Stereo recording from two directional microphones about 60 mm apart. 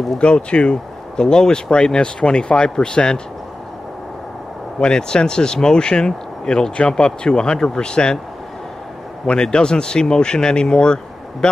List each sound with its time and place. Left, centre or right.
0.2 s speech: centre
4.7 s speech: centre
9.2 s speech: centre